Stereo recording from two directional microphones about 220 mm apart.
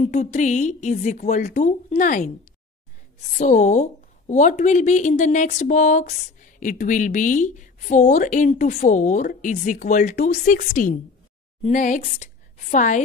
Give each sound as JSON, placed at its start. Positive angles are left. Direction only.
{"t": 0.0, "sound": "speech", "side_deg": 35}
{"t": 3.3, "sound": "a woman's voice", "side_deg": 35}